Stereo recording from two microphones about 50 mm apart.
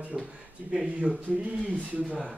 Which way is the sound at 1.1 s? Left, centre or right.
Right.